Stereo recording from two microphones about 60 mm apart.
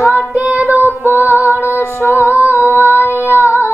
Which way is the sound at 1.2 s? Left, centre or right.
Left.